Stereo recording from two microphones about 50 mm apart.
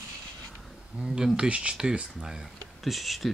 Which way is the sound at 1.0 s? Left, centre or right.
Right.